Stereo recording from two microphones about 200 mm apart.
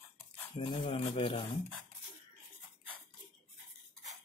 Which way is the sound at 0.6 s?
25° left (ahead or behind).